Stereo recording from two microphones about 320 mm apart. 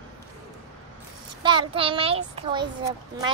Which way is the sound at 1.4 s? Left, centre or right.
Centre.